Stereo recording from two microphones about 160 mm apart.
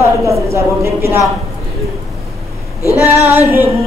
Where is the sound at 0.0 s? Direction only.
20° right (ahead or behind).